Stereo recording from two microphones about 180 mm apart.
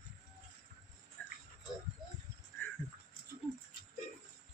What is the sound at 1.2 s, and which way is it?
Music, 5° left (ahead or behind).